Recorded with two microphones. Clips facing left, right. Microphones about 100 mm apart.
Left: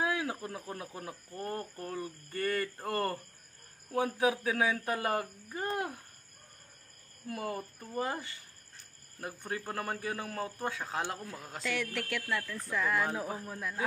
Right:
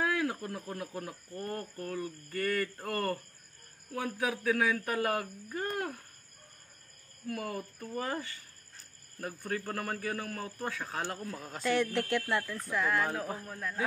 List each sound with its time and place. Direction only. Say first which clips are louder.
0.0 s speech: right 2 dB; 15° left (ahead or behind)
7.2 s a man's voice: even; 25° left (ahead or behind)
11.6 s speech: right 6 dB; 35° right (ahead or behind)
12.5 s speech: left 2 dB; centre (ahead or behind)
13.1 s a man's voice: even; 15° left (ahead or behind)